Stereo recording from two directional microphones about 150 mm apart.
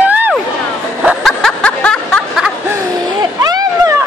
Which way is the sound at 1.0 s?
Centre (ahead or behind).